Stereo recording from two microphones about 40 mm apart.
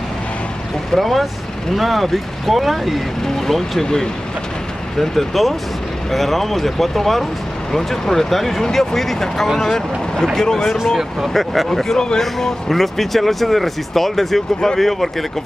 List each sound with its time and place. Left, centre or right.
0.9 s speech: centre
3.8 s speech: centre
4.9 s speech: centre